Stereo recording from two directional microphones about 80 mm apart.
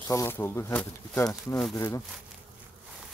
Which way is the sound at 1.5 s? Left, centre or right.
Centre.